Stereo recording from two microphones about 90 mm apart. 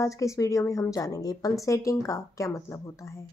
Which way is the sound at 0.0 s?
35° left (ahead or behind).